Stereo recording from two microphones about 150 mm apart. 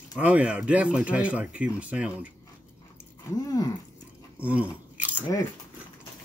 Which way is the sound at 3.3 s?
20° left (ahead or behind).